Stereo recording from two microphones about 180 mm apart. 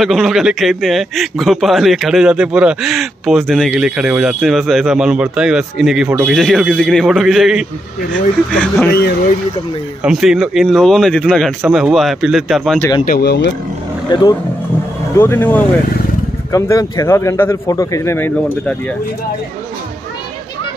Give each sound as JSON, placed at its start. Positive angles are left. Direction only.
{"t": 0.0, "sound": "a man's voice", "side_deg": 0}
{"t": 8.1, "sound": "speech", "side_deg": 10}
{"t": 10.0, "sound": "a man's voice", "side_deg": -5}
{"t": 13.0, "sound": "speech", "side_deg": 55}
{"t": 14.0, "sound": "speech", "side_deg": 20}